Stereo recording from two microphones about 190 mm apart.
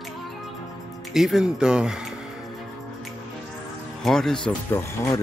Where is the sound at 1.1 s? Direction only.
Centre (ahead or behind).